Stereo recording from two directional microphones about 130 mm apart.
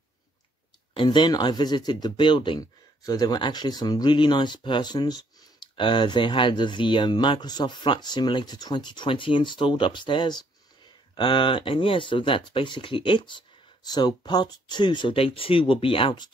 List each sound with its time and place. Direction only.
0.9 s speech: 35° left (ahead or behind)